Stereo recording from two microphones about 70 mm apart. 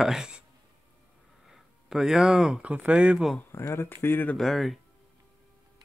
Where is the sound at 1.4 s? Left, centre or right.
Centre.